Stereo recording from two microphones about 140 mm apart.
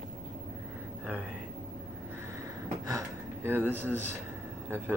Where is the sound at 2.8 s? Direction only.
20° right (ahead or behind).